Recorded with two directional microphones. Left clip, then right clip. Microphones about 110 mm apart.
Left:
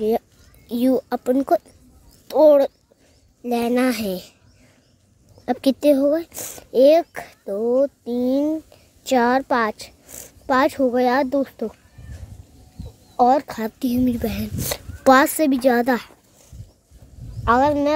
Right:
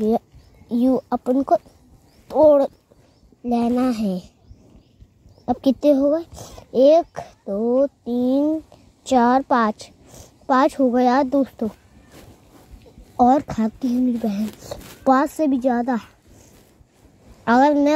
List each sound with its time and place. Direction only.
0.7 s speech: 30° left (ahead or behind)
5.5 s a child's voice: 35° left (ahead or behind)
13.1 s a child's voice: 25° left (ahead or behind)
13.7 s a child's voice: 50° left (ahead or behind)
15.0 s a woman's voice: 60° left (ahead or behind)
17.5 s a woman's voice: 10° left (ahead or behind)